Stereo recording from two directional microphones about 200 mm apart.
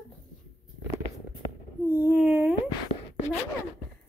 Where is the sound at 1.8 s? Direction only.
10° right (ahead or behind).